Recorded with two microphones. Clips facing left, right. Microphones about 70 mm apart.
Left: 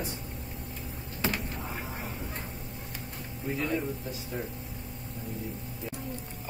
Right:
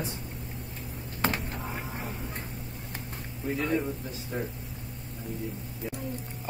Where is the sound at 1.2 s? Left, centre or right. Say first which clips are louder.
Right 2 dB; right.